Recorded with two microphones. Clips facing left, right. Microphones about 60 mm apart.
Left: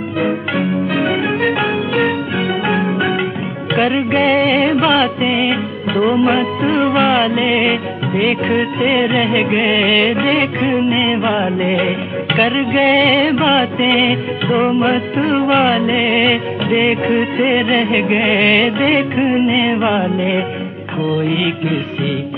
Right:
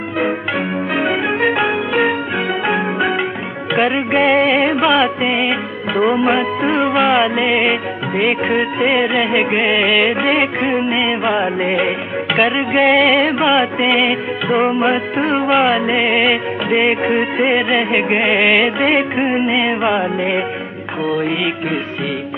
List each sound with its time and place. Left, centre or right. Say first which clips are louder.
0.2 s music: left 1 dB; centre